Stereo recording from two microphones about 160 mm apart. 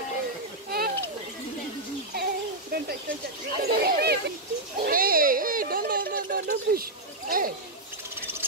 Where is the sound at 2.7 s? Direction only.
75° right (ahead or behind).